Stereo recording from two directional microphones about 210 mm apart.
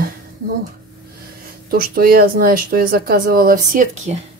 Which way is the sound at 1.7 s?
45° right (ahead or behind).